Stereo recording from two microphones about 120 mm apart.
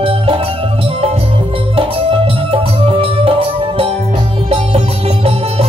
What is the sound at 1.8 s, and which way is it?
Music, 50° right (ahead or behind).